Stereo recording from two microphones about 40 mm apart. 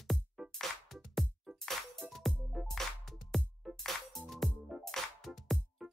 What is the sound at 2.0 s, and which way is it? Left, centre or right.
Music, right.